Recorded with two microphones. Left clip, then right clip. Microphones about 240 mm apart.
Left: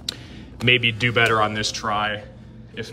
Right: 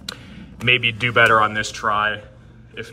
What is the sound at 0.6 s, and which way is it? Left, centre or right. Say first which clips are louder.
Speech: right 1 dB; centre.